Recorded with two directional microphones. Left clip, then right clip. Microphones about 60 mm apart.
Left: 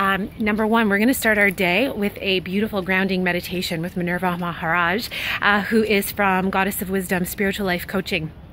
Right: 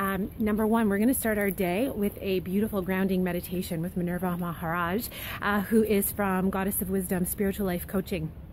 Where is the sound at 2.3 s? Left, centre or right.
Right.